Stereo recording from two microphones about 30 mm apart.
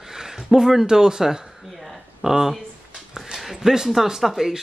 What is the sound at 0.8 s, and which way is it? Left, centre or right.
A man's voice, right.